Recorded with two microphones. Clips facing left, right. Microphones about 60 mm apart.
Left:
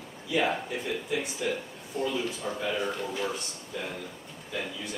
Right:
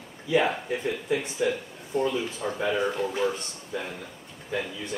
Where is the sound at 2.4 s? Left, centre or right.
Centre.